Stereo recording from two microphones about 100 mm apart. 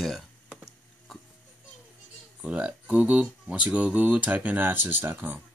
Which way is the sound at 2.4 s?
10° right (ahead or behind).